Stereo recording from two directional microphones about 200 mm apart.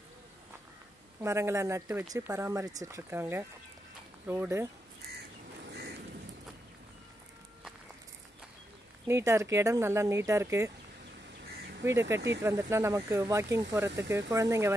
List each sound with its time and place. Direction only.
1.2 s speech: 15° right (ahead or behind)
5.7 s rain: 55° right (ahead or behind)
9.0 s speech: 15° right (ahead or behind)
11.4 s crow: 55° right (ahead or behind)
11.8 s speech: 15° right (ahead or behind)
12.2 s speech: 60° right (ahead or behind)
12.4 s speech: 15° right (ahead or behind)